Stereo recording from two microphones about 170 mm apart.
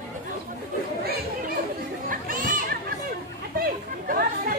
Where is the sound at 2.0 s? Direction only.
55° right (ahead or behind).